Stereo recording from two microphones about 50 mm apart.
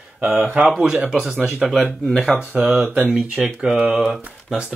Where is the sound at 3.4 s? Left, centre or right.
Centre.